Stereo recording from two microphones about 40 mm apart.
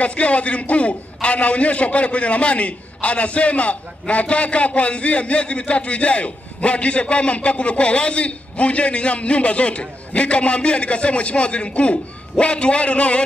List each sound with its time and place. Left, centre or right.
0.0 s a man's voice: left